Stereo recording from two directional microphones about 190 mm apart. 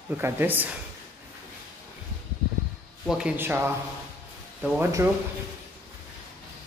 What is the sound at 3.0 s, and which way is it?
Speech, 5° right (ahead or behind).